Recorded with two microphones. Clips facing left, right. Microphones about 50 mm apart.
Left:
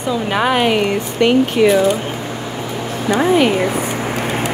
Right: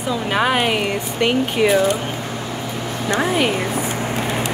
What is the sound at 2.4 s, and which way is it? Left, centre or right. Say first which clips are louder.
Vehicle: left 2 dB; centre.